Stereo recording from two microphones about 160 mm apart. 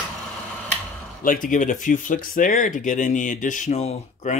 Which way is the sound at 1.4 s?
55° left (ahead or behind).